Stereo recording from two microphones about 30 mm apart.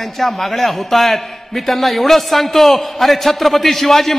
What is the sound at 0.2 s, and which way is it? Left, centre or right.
A man's voice, centre.